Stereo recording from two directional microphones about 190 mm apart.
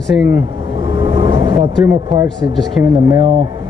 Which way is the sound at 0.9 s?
25° right (ahead or behind).